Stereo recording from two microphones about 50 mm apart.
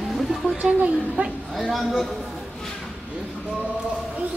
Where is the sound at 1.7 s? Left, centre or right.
Centre.